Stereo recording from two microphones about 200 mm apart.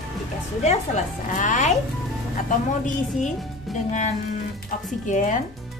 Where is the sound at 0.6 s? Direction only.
35° left (ahead or behind).